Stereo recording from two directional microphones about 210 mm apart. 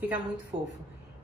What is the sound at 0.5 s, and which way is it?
Speech, 25° right (ahead or behind).